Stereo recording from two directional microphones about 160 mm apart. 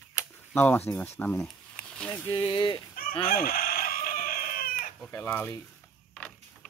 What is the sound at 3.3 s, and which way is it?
Chicken, 65° left (ahead or behind).